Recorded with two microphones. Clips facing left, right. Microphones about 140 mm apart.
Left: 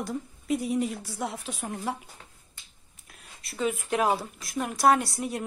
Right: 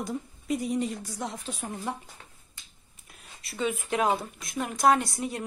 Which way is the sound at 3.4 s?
Centre (ahead or behind).